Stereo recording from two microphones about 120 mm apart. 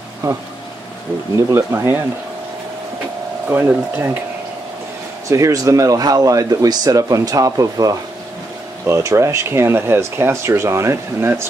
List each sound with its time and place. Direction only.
0.2 s speech: 30° right (ahead or behind)
1.5 s speech: 20° right (ahead or behind)
3.4 s speech: 15° right (ahead or behind)
5.3 s speech: 25° right (ahead or behind)